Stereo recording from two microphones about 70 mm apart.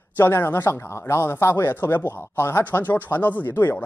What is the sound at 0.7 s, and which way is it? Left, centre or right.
Speech, left.